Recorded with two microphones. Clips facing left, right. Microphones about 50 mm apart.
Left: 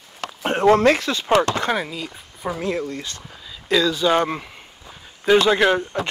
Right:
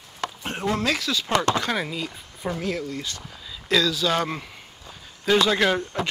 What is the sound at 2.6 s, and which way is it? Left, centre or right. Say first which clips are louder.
Speech: left 6 dB; left.